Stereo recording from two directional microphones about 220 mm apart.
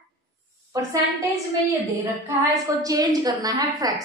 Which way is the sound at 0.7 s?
15° right (ahead or behind).